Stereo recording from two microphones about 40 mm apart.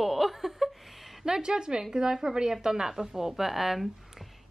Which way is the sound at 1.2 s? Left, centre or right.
Centre.